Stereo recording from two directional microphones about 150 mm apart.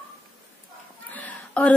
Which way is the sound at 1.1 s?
10° left (ahead or behind).